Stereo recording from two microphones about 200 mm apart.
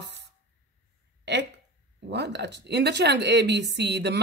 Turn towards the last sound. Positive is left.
turn(degrees=-55)  # may be behind; listen again after turning